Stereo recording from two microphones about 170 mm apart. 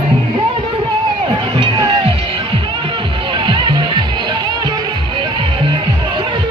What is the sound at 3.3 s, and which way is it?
Music, 25° right (ahead or behind).